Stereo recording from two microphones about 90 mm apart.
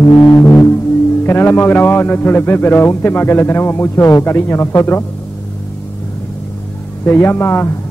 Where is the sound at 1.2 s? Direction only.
25° left (ahead or behind).